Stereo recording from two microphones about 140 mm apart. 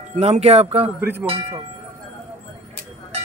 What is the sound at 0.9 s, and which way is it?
Speech, 15° right (ahead or behind).